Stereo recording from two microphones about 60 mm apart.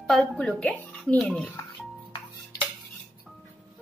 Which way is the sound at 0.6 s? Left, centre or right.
Left.